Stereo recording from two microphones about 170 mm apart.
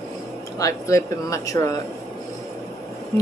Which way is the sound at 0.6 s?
15° left (ahead or behind).